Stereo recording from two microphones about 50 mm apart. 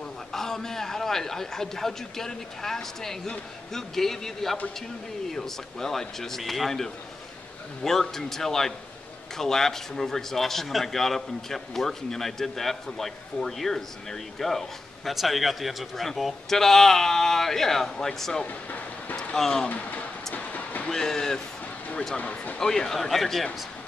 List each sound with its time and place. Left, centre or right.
0.3 s a man's voice: centre
18.5 s speech: left
19.1 s speech: centre
20.3 s vehicle: left
20.9 s a man's voice: centre
22.1 s speech: left
22.6 s a man's voice: centre